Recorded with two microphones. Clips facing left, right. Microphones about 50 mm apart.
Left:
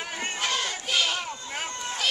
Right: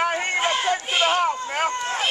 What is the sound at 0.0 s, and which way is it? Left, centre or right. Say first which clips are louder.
Run: right 10 dB; right.